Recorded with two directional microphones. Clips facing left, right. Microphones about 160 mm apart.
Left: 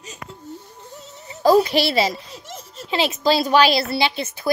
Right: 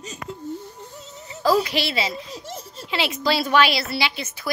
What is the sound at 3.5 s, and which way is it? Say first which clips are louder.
Speech: left 3 dB; 35° left (ahead or behind).